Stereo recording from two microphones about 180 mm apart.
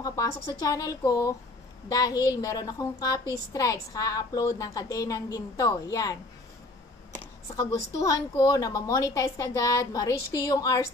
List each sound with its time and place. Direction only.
0.0 s a woman's voice: 20° left (ahead or behind)
8.0 s a woman's voice: 20° left (ahead or behind)